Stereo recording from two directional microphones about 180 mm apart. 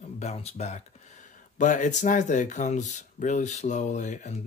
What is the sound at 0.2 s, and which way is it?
Speech, 35° left (ahead or behind).